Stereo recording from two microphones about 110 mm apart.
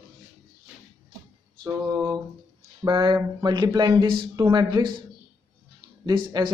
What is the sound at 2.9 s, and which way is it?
Speech, 50° right (ahead or behind).